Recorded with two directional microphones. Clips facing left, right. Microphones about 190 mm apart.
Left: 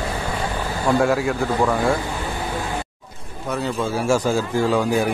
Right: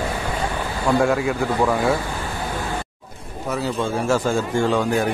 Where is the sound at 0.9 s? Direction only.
Centre (ahead or behind).